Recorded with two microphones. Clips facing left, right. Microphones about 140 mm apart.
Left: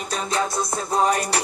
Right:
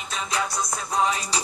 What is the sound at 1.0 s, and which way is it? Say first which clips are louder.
Music: left 5 dB; 55° left (ahead or behind).